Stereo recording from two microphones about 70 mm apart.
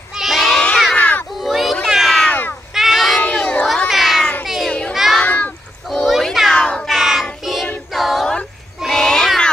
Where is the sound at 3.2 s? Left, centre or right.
Centre.